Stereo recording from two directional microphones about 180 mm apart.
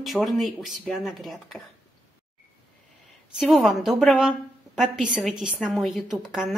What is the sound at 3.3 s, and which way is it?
A woman's voice, centre (ahead or behind).